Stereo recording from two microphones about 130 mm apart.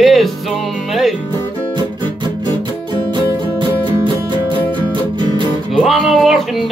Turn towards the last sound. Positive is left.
turn(degrees=0)  # may be behind; listen again after turning